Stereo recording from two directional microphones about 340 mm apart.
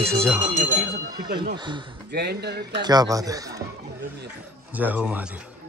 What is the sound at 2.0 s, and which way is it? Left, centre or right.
Speech, right.